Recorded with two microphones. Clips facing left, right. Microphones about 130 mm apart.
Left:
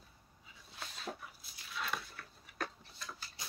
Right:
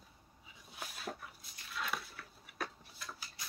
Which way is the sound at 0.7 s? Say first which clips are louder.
Right 1 dB; 5° right (ahead or behind).